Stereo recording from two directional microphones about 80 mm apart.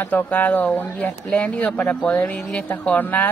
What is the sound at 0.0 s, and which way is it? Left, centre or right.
A man's voice, left.